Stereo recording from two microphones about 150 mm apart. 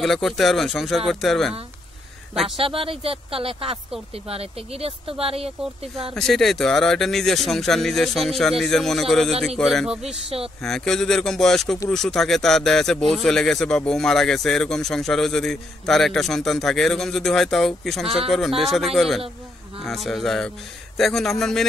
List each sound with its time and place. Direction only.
0.0 s speech: centre (ahead or behind)
2.5 s speech: 40° right (ahead or behind)
6.1 s speech: centre (ahead or behind)